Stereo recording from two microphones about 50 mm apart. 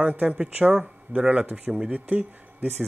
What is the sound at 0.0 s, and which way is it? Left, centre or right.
Speech, right.